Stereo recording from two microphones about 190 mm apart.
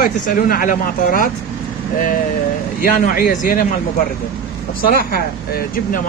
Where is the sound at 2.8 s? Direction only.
50° left (ahead or behind).